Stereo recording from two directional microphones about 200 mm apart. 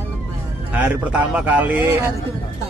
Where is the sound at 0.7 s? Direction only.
5° right (ahead or behind).